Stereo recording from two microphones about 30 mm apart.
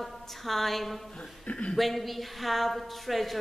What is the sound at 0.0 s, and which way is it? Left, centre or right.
A woman's voice, centre.